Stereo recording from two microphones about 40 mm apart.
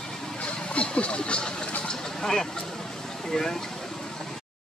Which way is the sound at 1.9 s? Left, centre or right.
Centre.